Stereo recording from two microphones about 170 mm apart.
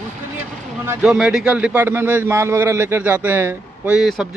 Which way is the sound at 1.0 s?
5° right (ahead or behind).